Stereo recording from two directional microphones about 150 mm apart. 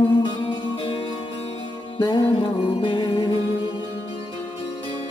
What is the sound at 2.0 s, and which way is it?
Music, 35° left (ahead or behind).